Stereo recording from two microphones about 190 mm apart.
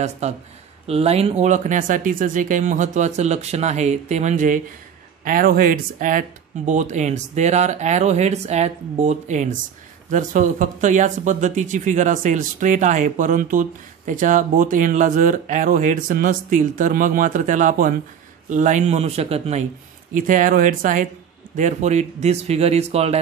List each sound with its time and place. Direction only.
0.2 s speech: 35° right (ahead or behind)
20.2 s speech: 45° right (ahead or behind)